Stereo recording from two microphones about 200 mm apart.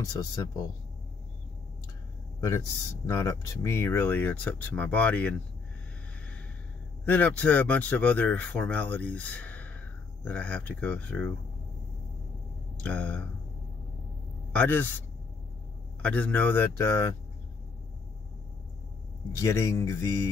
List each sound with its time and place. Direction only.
0.0 s speech: 20° left (ahead or behind)
2.4 s speech: 15° left (ahead or behind)
7.1 s speech: 10° left (ahead or behind)
12.7 s speech: 10° left (ahead or behind)
14.5 s a man's voice: 10° left (ahead or behind)
19.3 s speech: 15° left (ahead or behind)